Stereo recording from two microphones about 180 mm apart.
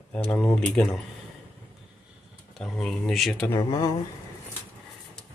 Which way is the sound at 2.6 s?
5° left (ahead or behind).